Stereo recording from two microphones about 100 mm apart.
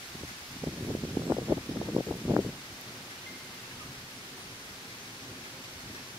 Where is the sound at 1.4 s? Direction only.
20° right (ahead or behind).